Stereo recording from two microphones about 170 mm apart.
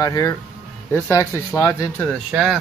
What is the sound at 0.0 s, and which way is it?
Speech, 20° left (ahead or behind).